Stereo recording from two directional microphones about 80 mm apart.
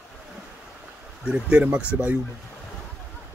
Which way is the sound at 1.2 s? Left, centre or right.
Centre.